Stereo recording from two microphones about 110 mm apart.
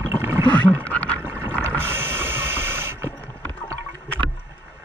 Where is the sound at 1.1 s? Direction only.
20° right (ahead or behind).